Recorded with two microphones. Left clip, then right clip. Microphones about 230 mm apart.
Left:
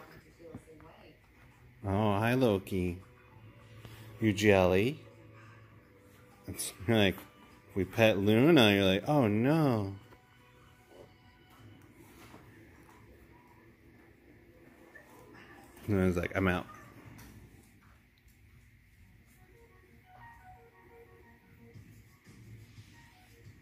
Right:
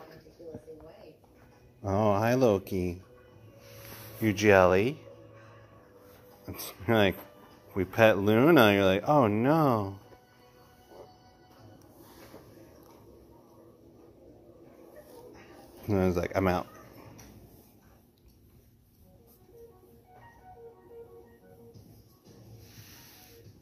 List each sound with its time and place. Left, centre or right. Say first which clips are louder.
1.8 s speech: right 5 dB; centre
4.2 s speech: right 4 dB; centre
6.4 s speech: right 3 dB; centre
15.9 s speech: right 4 dB; centre